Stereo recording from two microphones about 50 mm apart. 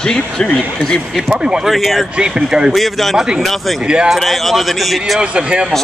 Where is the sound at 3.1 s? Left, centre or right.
Centre.